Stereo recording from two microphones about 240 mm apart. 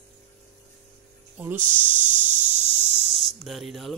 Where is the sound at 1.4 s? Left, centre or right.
Centre.